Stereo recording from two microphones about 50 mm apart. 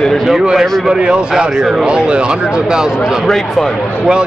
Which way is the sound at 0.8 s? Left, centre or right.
Centre.